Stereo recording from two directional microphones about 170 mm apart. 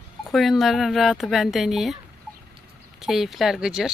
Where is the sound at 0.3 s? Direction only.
Centre (ahead or behind).